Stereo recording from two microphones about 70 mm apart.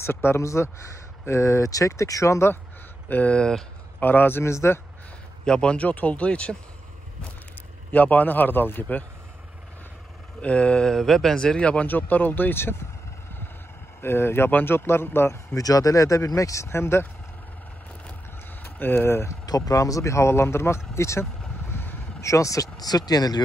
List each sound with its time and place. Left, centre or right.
0.0 s speech: left
3.1 s speech: left
4.0 s speech: left
5.4 s speech: centre
7.9 s a man's voice: left
10.4 s speech: centre
14.0 s speech: left
15.5 s speech: left
18.6 s speech: left
19.4 s speech: left
22.2 s speech: left